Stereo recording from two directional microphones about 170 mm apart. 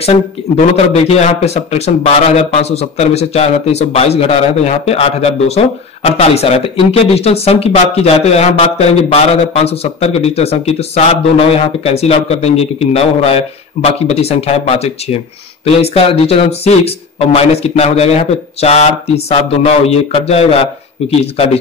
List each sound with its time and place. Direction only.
0.6 s a man's voice: 40° left (ahead or behind)